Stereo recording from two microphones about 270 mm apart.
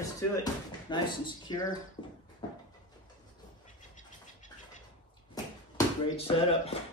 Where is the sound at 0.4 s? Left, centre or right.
Centre.